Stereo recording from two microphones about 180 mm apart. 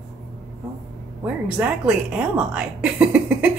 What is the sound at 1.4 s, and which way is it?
Speech, 5° right (ahead or behind).